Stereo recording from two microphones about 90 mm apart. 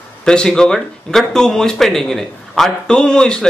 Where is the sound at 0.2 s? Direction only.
10° left (ahead or behind).